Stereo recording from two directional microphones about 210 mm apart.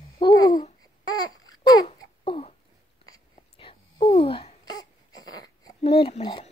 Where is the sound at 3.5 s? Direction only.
25° left (ahead or behind).